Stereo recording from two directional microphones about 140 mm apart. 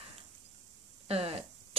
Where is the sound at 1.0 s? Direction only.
45° right (ahead or behind).